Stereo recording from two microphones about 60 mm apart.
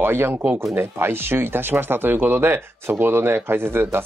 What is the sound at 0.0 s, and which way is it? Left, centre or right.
Speech, right.